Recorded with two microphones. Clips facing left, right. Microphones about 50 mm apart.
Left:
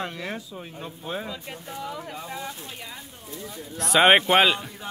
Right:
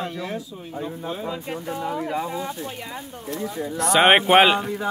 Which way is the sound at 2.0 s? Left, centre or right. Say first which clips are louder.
Right 10 dB; right.